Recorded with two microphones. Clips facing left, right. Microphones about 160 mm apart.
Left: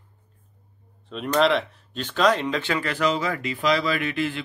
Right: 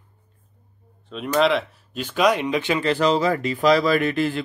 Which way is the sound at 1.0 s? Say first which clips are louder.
Right 1 dB; centre (ahead or behind).